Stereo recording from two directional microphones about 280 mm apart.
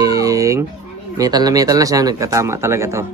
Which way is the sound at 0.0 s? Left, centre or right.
Centre.